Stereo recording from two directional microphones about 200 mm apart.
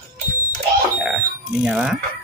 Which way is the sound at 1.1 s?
Centre (ahead or behind).